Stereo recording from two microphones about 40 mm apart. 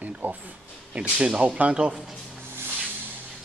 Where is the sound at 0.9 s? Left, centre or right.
Right.